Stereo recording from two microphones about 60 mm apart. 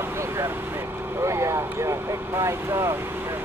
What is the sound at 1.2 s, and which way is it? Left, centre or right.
Vehicle, right.